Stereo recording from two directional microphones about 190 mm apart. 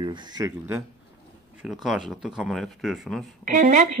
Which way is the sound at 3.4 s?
40° right (ahead or behind).